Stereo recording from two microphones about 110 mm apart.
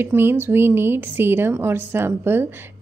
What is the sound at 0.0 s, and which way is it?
A woman's voice, 20° right (ahead or behind).